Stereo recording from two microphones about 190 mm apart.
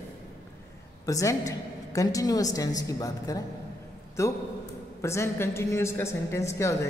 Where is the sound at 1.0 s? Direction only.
15° left (ahead or behind).